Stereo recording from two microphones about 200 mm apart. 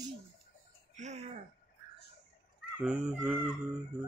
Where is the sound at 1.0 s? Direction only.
35° right (ahead or behind).